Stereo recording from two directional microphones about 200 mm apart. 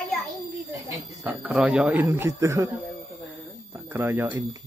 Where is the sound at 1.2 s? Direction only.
5° right (ahead or behind).